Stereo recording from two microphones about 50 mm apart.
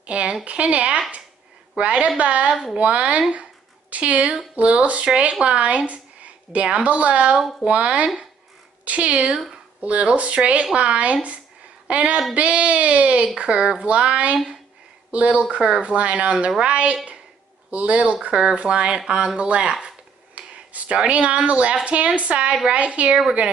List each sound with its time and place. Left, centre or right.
0.0 s a woman's voice: right